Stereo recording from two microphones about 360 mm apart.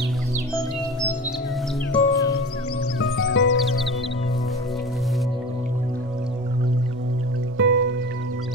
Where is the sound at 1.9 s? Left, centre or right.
Centre.